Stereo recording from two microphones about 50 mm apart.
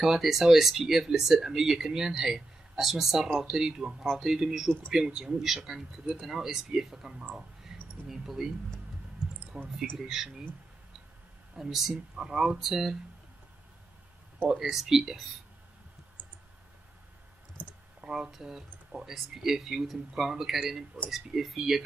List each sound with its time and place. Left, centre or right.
0.0 s speech: centre
9.2 s a sound: centre
9.9 s speech: centre
11.5 s speech: centre
14.5 s speech: centre
18.0 s speech: centre